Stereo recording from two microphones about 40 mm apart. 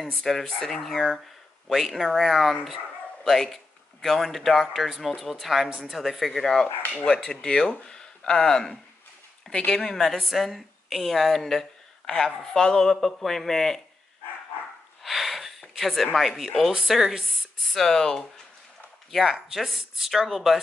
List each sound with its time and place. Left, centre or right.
0.2 s speech: centre
7.1 s speech: left
12.8 s speech: centre
15.0 s a sound: centre
15.7 s speech: centre
17.7 s speech: centre
19.2 s speech: centre